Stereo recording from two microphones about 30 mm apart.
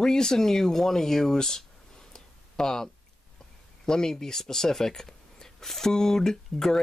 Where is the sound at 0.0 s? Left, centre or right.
Left.